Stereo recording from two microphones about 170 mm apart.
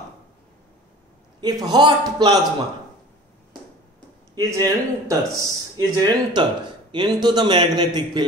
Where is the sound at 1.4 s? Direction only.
25° right (ahead or behind).